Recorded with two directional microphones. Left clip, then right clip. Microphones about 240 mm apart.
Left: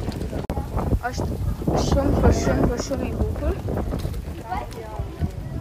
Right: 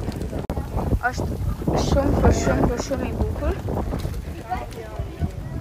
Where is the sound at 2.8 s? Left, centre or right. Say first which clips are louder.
Right 1 dB; centre.